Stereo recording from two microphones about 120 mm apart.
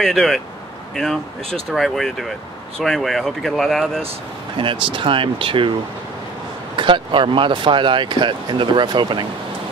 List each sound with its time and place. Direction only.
0.0 s speech: 5° left (ahead or behind)
4.6 s speech: 45° right (ahead or behind)
6.8 s speech: 45° right (ahead or behind)